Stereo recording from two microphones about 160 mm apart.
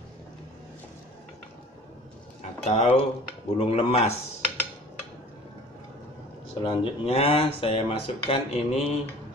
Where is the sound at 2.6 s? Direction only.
45° left (ahead or behind).